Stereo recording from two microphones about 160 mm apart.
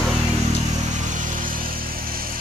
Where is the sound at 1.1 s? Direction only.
60° right (ahead or behind).